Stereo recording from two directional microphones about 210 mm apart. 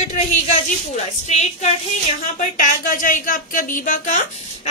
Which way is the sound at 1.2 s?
30° left (ahead or behind).